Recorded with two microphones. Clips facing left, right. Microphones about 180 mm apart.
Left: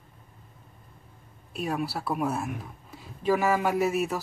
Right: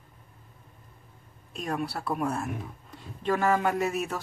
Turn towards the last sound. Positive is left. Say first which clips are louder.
# left 3 dB
turn(degrees=5)  # may be behind; listen again after turning